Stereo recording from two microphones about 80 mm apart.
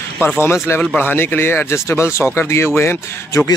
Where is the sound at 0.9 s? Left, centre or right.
Left.